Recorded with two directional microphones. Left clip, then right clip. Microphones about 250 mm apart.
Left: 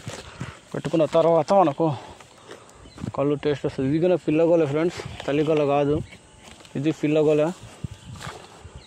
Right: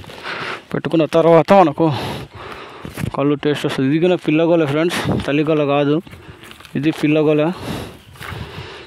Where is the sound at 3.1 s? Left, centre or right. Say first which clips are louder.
Right 6 dB; right.